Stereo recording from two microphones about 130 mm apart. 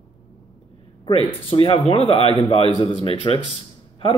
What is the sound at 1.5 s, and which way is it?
A man's voice, 45° left (ahead or behind).